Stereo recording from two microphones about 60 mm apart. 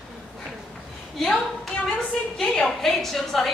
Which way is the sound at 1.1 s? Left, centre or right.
Centre.